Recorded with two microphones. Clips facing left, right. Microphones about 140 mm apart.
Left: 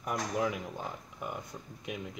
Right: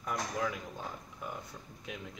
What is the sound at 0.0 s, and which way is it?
Speech, 20° left (ahead or behind).